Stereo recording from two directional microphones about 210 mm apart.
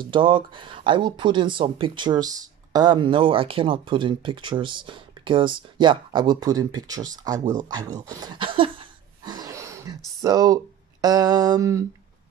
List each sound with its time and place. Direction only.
0.0 s speech: 25° right (ahead or behind)